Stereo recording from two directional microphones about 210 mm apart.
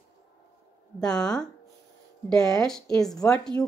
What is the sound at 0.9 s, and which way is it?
A woman's voice, 5° left (ahead or behind).